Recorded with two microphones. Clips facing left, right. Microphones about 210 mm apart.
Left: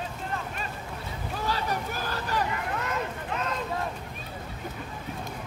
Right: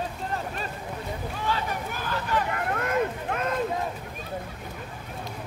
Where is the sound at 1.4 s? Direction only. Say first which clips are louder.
Even; 40° left (ahead or behind).